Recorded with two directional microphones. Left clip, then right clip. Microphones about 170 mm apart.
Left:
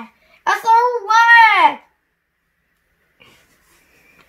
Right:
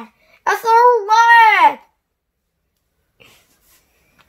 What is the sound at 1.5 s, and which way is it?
Baby cry, 40° right (ahead or behind).